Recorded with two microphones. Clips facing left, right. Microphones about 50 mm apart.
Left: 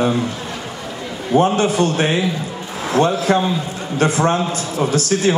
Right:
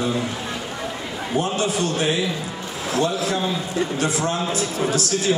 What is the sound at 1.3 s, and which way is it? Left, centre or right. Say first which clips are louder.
A man's voice: left 8 dB; left.